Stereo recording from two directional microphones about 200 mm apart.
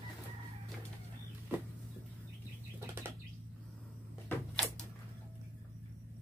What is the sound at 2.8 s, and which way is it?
Bird flight, 10° right (ahead or behind).